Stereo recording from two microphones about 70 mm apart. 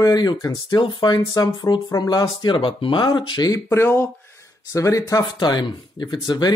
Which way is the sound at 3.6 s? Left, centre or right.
Left.